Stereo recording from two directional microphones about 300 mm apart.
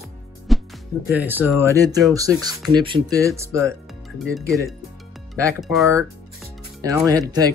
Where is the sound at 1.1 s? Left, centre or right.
Centre.